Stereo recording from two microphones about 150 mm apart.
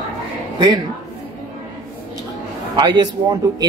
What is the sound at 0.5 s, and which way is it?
Speech, 30° right (ahead or behind).